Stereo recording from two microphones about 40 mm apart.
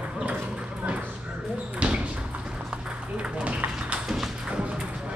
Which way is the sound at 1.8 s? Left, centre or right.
Right.